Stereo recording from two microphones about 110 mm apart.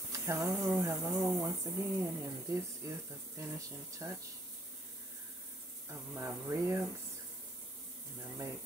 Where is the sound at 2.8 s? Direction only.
30° right (ahead or behind).